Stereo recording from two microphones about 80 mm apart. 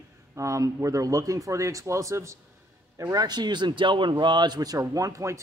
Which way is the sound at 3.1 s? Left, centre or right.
Right.